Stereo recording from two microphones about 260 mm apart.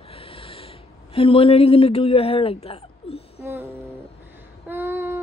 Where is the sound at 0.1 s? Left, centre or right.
Left.